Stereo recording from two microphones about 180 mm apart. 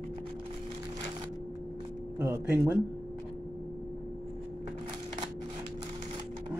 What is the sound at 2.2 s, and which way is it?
Speech, 15° right (ahead or behind).